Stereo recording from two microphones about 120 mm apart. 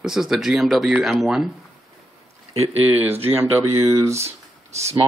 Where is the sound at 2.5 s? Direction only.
60° right (ahead or behind).